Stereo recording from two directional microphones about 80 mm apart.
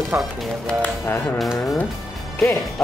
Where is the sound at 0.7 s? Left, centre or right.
Left.